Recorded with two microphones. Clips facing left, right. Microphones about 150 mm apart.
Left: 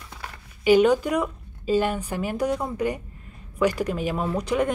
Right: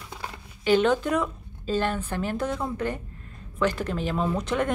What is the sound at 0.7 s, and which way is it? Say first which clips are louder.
A woman's voice: left 4 dB; 10° left (ahead or behind).